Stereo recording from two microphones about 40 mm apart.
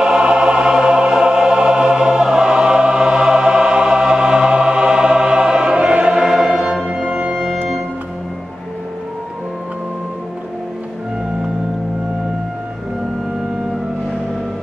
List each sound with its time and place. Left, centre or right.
0.0 s choir: right
6.9 s music: right